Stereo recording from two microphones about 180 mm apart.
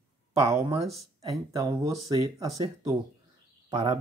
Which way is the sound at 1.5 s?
20° right (ahead or behind).